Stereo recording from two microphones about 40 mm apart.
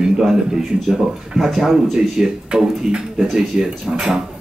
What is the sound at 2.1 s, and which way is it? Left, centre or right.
Speech, centre.